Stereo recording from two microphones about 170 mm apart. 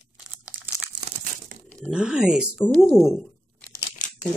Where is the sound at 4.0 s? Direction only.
50° left (ahead or behind).